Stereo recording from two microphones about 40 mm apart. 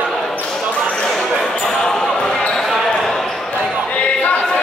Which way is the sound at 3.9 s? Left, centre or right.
Left.